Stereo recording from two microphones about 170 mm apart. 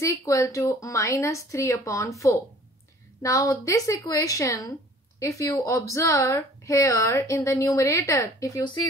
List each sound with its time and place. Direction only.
0.0 s a woman's voice: 20° left (ahead or behind)